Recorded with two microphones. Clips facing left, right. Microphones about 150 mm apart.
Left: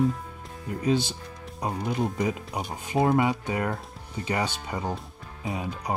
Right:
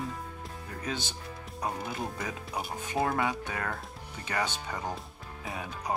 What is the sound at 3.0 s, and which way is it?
Speech, 20° left (ahead or behind).